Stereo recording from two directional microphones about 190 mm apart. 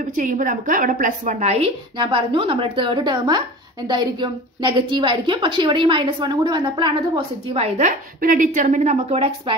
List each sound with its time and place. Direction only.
0.0 s a woman's voice: 45° right (ahead or behind)